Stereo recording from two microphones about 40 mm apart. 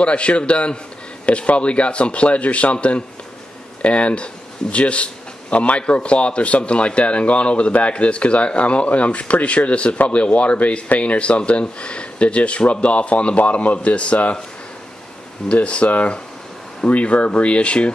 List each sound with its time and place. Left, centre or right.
0.0 s a man's voice: left
15.4 s a man's voice: left